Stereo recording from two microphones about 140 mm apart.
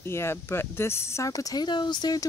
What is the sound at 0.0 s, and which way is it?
Speech, 20° left (ahead or behind).